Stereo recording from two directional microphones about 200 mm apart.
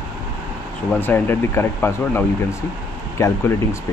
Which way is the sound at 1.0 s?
10° left (ahead or behind).